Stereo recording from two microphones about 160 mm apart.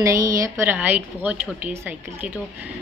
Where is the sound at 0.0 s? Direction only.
20° right (ahead or behind).